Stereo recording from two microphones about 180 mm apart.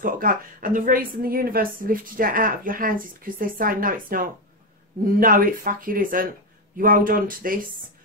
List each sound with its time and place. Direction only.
0.0 s a woman's voice: 50° right (ahead or behind)